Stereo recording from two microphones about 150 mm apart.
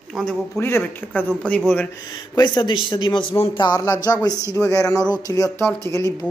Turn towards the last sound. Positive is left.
turn(degrees=20)  # may be behind; listen again after turning